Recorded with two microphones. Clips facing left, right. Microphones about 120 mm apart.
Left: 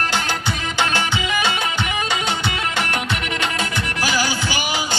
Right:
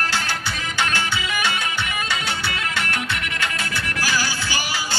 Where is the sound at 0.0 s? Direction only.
20° left (ahead or behind).